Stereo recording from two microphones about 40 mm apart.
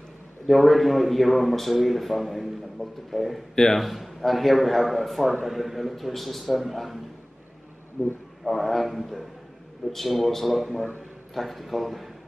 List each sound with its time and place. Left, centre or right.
0.5 s a man's voice: centre
3.5 s a man's voice: centre
3.8 s a man's voice: centre
8.0 s a man's voice: centre